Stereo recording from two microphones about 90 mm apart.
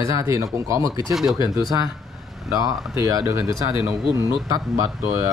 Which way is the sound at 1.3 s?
55° left (ahead or behind).